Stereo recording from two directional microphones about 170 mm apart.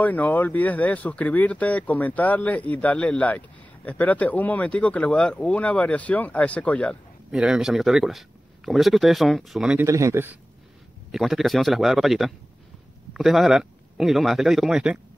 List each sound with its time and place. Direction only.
0.0 s speech: 10° left (ahead or behind)
7.2 s a man's voice: 5° right (ahead or behind)
9.8 s a man's voice: 20° right (ahead or behind)
11.1 s a man's voice: centre (ahead or behind)